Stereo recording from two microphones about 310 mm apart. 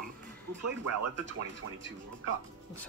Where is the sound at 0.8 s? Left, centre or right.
Right.